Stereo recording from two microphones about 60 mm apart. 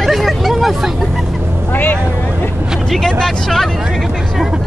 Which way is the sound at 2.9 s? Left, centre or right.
Centre.